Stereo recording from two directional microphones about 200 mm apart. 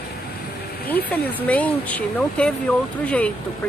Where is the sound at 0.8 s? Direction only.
10° left (ahead or behind).